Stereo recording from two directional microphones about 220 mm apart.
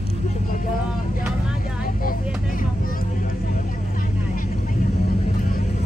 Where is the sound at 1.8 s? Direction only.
40° left (ahead or behind).